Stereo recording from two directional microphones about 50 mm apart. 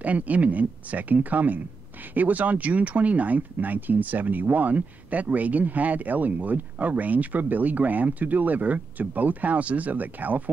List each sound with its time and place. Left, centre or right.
0.0 s speech: right